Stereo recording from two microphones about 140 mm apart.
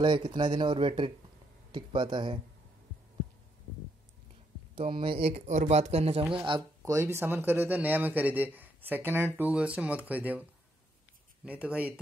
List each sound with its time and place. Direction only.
0.0 s speech: 35° right (ahead or behind)
5.0 s speech: 40° right (ahead or behind)
6.3 s speech: 35° right (ahead or behind)
6.8 s a man's voice: 20° right (ahead or behind)
11.4 s a man's voice: 10° right (ahead or behind)